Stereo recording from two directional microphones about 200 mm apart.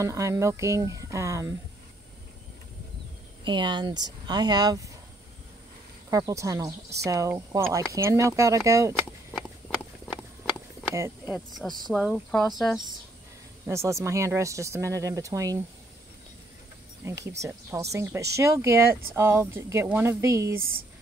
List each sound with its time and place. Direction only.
0.0 s speech: 15° right (ahead or behind)
3.4 s speech: 25° right (ahead or behind)
6.0 s speech: 15° right (ahead or behind)
10.9 s speech: 10° right (ahead or behind)
13.7 s speech: 15° right (ahead or behind)
17.0 s speech: 15° right (ahead or behind)